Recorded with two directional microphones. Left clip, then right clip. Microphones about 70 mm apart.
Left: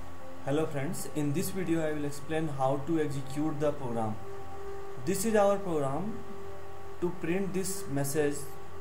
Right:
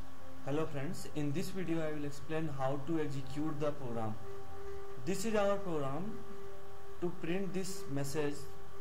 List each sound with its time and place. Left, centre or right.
0.5 s speech: centre
7.2 s speech: centre